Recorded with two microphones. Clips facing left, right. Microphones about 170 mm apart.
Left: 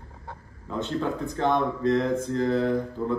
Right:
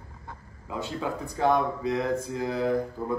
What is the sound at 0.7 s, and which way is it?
A man's voice, 5° right (ahead or behind).